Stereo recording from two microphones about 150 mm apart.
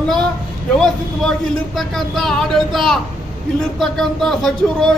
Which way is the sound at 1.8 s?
Centre (ahead or behind).